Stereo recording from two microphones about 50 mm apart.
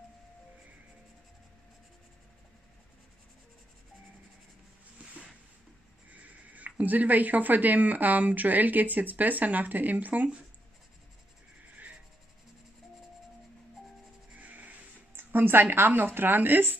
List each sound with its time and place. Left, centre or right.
6.2 s speech: right
14.3 s music: right
15.1 s a woman's voice: right